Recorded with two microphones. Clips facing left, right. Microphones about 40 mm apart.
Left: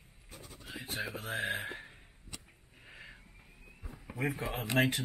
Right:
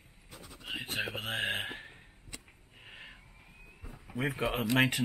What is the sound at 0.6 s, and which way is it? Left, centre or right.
Speech, right.